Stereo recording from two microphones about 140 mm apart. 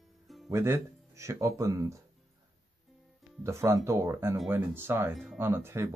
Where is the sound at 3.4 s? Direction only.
20° right (ahead or behind).